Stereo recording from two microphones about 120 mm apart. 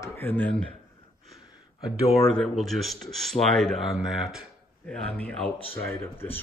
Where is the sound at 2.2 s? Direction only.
5° left (ahead or behind).